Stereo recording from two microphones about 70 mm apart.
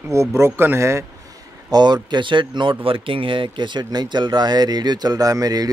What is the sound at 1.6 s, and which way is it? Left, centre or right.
Speech, right.